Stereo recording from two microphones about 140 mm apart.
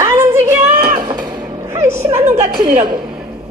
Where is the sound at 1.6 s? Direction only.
20° right (ahead or behind).